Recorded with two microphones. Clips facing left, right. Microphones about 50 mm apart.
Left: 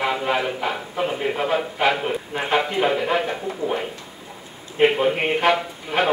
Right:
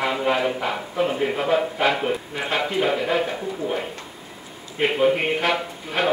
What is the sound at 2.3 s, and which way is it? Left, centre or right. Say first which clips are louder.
Speech: left 3 dB; left.